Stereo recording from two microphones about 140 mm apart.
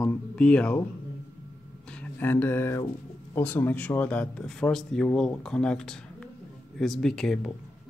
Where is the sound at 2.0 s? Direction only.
15° left (ahead or behind).